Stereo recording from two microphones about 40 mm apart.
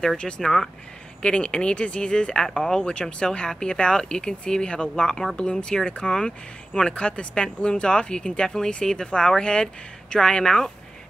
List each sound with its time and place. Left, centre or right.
0.4 s speech: centre
1.2 s speech: left